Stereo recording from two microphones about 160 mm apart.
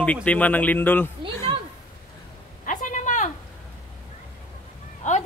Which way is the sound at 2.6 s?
55° left (ahead or behind).